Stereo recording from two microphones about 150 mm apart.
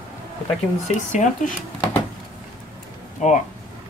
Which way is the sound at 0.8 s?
55° left (ahead or behind).